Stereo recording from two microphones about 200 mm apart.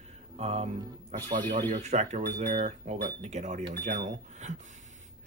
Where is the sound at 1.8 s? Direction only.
35° right (ahead or behind).